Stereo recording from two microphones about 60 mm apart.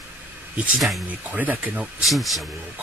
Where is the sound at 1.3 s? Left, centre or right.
Right.